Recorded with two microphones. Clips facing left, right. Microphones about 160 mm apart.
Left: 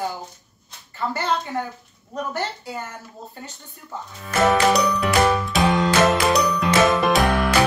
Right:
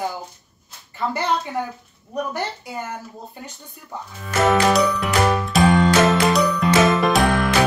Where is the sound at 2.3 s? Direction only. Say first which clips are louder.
Even; 15° right (ahead or behind).